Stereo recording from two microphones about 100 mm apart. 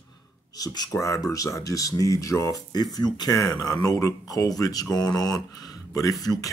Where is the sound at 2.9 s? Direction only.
40° left (ahead or behind).